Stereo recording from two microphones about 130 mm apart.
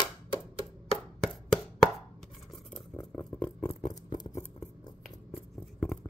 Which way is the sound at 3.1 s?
10° left (ahead or behind).